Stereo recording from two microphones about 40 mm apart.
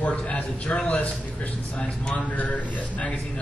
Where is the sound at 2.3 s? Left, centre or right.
Left.